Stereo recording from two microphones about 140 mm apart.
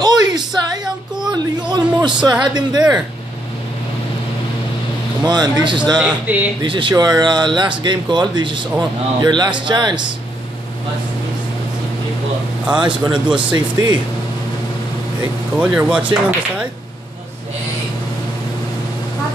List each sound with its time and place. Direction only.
0.0 s a sound: 30° right (ahead or behind)
0.5 s child singing: 5° right (ahead or behind)
1.7 s a sound: 30° right (ahead or behind)
2.4 s speech: 30° right (ahead or behind)
5.2 s speech: 30° right (ahead or behind)
5.9 s speech: 10° right (ahead or behind)
6.6 s speech: 35° right (ahead or behind)
12.8 s speech: 35° right (ahead or behind)
15.5 s speech: 10° right (ahead or behind)